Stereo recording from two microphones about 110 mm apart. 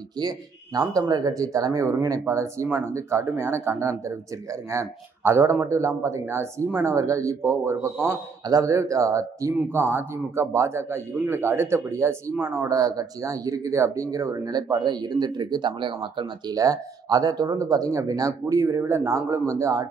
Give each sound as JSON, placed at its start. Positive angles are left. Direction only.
{"t": 0.2, "sound": "a man's voice", "side_deg": -35}
{"t": 12.6, "sound": "speech", "side_deg": -35}
{"t": 16.5, "sound": "speech", "side_deg": -35}